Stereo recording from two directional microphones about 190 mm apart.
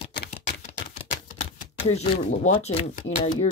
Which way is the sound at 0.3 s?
35° left (ahead or behind).